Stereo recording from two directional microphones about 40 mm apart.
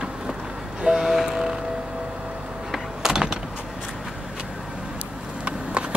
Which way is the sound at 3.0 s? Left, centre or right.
Centre.